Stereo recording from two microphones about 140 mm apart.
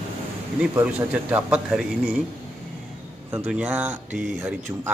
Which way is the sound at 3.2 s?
15° right (ahead or behind).